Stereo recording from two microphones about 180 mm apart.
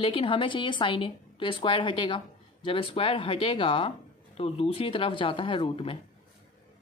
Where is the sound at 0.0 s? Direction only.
30° left (ahead or behind).